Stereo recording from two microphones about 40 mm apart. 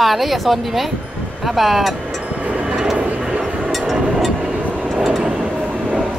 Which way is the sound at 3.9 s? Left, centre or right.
Centre.